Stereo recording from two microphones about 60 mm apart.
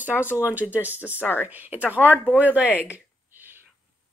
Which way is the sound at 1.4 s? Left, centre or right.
Right.